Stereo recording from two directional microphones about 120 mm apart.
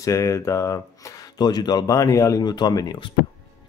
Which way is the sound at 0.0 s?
25° left (ahead or behind).